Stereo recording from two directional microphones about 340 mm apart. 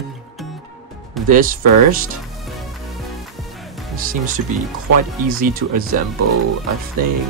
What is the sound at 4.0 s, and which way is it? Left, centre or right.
Speech, right.